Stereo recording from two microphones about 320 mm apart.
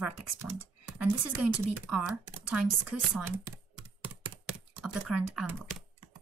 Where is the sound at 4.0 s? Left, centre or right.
Centre.